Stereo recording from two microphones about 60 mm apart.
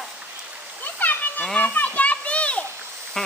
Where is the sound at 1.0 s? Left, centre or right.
Left.